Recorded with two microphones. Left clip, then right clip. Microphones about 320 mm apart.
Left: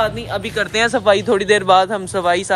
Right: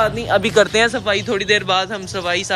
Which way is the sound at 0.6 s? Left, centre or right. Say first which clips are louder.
Right 1 dB; centre.